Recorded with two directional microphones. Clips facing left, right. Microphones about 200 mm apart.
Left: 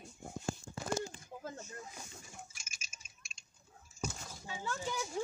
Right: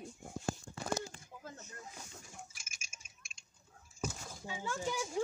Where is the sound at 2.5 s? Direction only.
50° right (ahead or behind).